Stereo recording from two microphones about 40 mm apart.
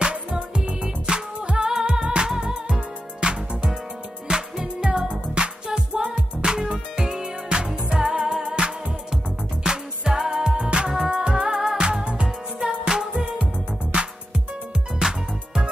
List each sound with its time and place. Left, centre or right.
0.0 s music: right; by 10.3 s centre
10.6 s music: right
13.9 s music: right
15.0 s music: centre